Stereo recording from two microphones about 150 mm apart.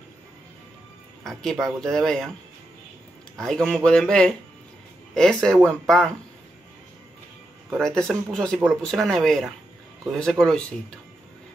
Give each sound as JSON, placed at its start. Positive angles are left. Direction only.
{"t": 1.2, "sound": "speech", "side_deg": 5}
{"t": 3.3, "sound": "speech", "side_deg": 5}
{"t": 7.8, "sound": "speech", "side_deg": 5}